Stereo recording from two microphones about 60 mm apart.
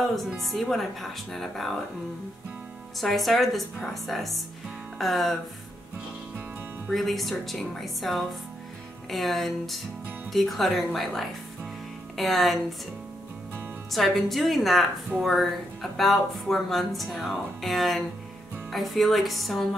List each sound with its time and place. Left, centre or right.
0.4 s speech: centre
3.0 s speech: centre
6.9 s speech: centre
13.9 s speech: centre